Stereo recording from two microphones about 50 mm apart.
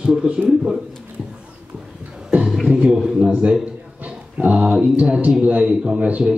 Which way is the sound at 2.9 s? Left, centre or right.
Centre.